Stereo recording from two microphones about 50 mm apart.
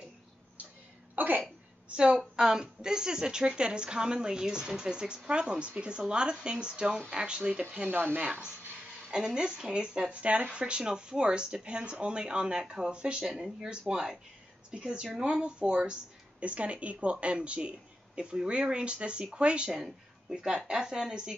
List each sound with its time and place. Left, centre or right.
1.1 s a sound: right
1.9 s a woman's voice: centre
7.9 s speech: right
8.2 s a woman's voice: centre
15.1 s a woman's voice: centre